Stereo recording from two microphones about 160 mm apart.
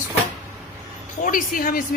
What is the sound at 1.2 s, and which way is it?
Speech, 55° left (ahead or behind).